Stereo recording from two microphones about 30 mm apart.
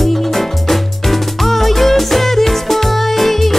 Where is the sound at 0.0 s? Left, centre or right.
Centre.